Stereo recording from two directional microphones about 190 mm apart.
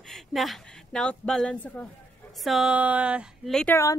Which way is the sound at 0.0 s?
Centre (ahead or behind).